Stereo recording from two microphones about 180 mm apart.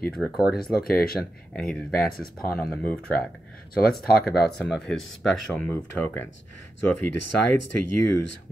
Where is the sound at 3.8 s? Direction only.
55° left (ahead or behind).